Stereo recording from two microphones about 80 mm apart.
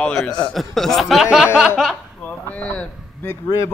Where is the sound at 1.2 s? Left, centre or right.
Centre.